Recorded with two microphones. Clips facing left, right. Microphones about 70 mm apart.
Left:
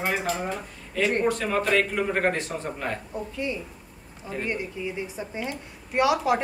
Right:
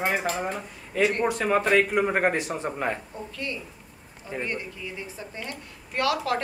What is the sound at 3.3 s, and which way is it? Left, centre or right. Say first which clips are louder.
A woman's voice: left 3 dB; centre.